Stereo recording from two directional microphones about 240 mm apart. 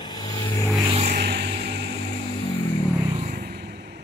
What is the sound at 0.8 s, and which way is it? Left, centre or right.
Vehicle, right.